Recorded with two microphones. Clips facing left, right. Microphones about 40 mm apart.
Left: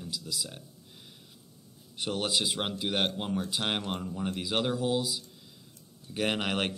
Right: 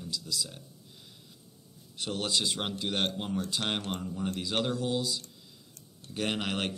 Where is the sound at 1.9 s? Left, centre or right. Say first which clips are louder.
Left 1 dB; centre.